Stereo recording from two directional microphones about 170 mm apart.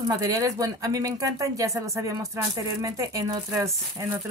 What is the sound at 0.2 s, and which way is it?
Speech, 20° right (ahead or behind).